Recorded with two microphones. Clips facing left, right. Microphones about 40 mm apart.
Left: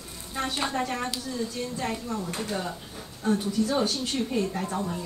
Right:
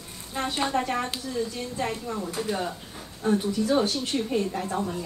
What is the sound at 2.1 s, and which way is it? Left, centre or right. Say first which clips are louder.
Speech: even; right.